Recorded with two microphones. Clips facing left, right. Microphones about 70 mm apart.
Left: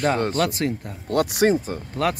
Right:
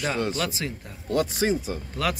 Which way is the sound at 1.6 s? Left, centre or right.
Left.